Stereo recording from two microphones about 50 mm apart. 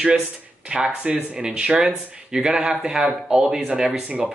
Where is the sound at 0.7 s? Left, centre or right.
Centre.